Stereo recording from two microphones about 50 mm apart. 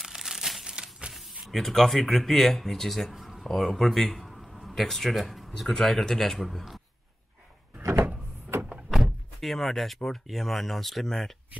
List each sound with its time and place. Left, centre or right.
0.0 s crumpling: centre
1.5 s a man's voice: centre
7.8 s door: right
8.9 s speech: centre